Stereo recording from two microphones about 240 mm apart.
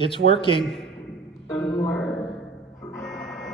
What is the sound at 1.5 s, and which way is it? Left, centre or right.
Music, centre.